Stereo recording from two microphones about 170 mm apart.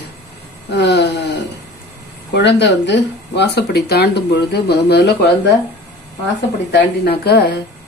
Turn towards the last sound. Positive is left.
turn(degrees=70)  # may be behind; listen again after turning